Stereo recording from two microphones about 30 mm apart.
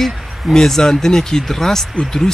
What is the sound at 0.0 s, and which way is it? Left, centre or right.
Speech, centre.